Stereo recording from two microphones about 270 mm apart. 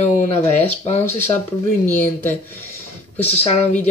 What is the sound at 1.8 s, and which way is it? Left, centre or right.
Speech, centre.